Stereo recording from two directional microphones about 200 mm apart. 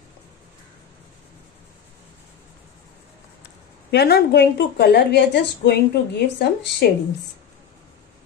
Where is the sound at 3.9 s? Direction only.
55° left (ahead or behind).